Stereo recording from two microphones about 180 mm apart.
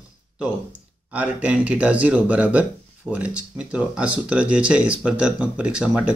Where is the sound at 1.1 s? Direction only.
5° right (ahead or behind).